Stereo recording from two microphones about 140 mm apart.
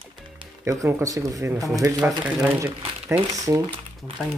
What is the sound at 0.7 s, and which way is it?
Speech, 20° right (ahead or behind).